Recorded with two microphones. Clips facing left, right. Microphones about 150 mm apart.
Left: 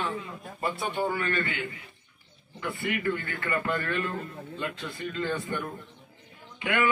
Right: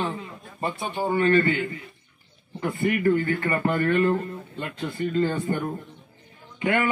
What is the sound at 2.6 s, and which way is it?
A man's voice, 45° right (ahead or behind).